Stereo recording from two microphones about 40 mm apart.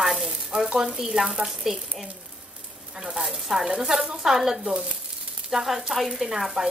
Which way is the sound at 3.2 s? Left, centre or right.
Centre.